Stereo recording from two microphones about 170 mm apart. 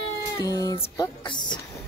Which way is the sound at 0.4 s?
20° left (ahead or behind).